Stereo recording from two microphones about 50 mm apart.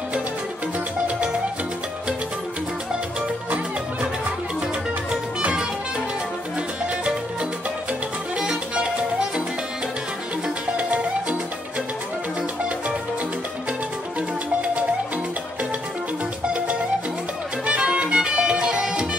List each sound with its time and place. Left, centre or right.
8.4 s music: centre
10.8 s music: right
16.4 s music: right